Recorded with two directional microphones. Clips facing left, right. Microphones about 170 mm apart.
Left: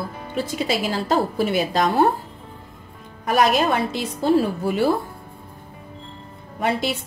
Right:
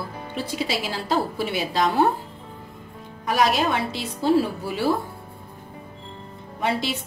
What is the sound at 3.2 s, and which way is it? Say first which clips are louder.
Speech: left 3 dB; 50° left (ahead or behind).